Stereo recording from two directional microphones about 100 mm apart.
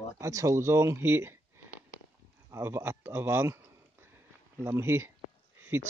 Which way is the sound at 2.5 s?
25° right (ahead or behind).